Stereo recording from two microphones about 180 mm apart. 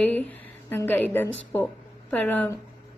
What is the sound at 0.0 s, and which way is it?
A woman's voice, 10° left (ahead or behind).